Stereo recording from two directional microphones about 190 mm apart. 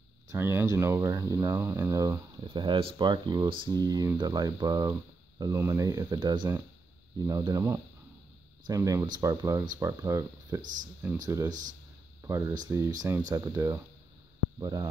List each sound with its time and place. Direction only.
0.3 s speech: 10° right (ahead or behind)